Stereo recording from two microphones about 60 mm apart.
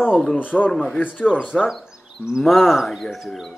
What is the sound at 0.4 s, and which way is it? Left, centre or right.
Speech, left.